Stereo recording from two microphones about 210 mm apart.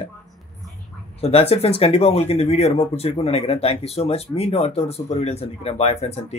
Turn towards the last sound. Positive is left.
turn(degrees=30)  # may be behind; listen again after turning